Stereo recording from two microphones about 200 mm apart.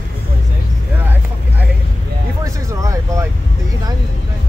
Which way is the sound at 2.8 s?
15° right (ahead or behind).